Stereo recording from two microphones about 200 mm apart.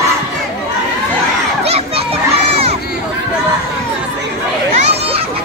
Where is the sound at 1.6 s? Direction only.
30° right (ahead or behind).